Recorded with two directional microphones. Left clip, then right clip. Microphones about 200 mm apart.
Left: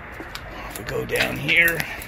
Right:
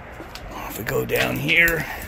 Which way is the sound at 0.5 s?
35° right (ahead or behind).